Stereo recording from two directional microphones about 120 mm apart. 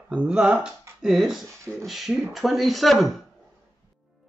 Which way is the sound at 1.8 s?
Centre (ahead or behind).